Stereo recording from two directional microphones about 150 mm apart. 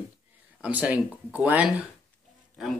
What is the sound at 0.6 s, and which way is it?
Speech, 10° right (ahead or behind).